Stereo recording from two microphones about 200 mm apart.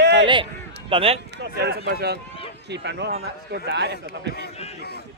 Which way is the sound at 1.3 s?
55° right (ahead or behind).